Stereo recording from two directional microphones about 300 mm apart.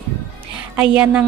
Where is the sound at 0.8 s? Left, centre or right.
Centre.